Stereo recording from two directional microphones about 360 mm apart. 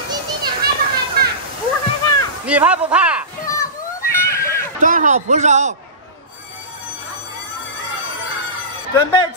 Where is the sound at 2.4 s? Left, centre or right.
Centre.